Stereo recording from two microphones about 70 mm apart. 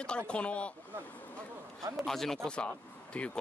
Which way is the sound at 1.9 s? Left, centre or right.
Centre.